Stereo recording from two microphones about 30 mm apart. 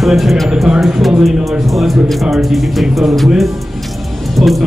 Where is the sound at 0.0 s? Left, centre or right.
Centre.